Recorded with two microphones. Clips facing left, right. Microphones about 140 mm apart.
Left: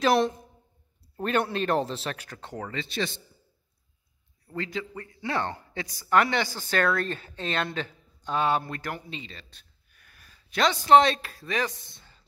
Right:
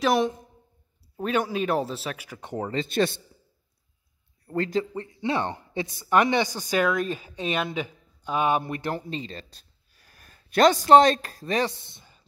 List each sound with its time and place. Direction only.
0.0 s speech: centre (ahead or behind)
2.7 s a man's voice: 40° right (ahead or behind)
4.5 s speech: 45° right (ahead or behind)
4.9 s speech: 25° right (ahead or behind)
8.9 s a sound: 40° right (ahead or behind)
10.2 s speech: 50° right (ahead or behind); by 12.2 s 20° right (ahead or behind)